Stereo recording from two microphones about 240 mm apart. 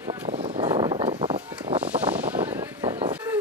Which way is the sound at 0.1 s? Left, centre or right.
Right.